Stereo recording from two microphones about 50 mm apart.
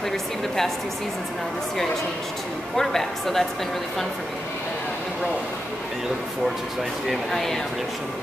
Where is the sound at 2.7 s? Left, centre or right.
Centre.